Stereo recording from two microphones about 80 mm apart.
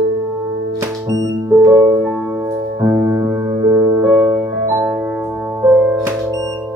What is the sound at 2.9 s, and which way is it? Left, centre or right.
Music, right.